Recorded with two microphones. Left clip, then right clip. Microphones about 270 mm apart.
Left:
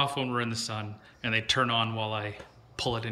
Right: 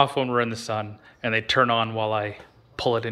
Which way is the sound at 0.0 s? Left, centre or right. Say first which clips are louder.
Right 8 dB; centre.